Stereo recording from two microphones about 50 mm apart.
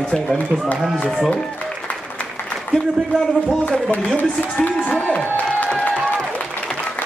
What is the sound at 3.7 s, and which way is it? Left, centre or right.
A man's voice, left.